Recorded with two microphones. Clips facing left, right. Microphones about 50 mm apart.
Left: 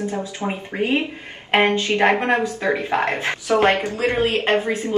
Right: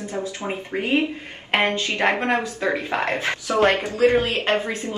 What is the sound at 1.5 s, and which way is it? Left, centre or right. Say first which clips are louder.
A woman's voice: left 4 dB; left.